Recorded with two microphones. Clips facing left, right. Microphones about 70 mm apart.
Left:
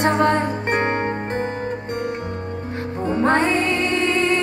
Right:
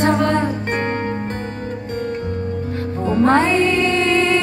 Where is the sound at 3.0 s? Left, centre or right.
Centre.